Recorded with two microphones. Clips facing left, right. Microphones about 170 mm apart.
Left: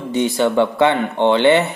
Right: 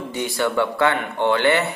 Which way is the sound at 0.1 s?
25° left (ahead or behind).